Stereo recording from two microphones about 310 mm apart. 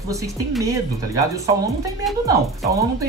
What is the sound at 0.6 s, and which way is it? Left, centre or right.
Speech, centre.